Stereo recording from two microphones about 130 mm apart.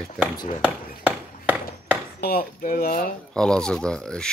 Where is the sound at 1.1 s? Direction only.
15° right (ahead or behind).